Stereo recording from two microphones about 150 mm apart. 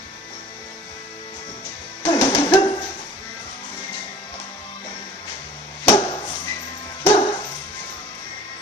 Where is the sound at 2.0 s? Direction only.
35° left (ahead or behind).